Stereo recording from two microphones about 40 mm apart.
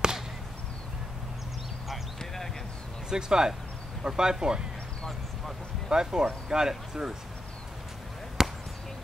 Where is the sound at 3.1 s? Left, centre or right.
Centre.